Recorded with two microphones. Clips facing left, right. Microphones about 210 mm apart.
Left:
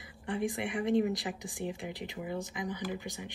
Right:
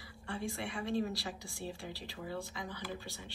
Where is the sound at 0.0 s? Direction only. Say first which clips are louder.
Left 7 dB; 20° left (ahead or behind).